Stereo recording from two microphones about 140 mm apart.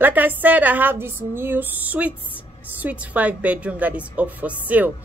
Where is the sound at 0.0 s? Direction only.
15° right (ahead or behind).